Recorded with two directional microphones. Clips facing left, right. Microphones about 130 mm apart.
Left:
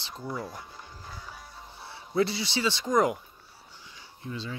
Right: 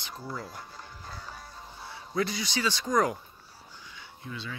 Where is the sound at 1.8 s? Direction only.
25° left (ahead or behind).